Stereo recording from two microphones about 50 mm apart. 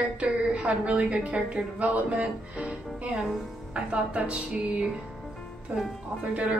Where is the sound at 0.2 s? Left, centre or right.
Right.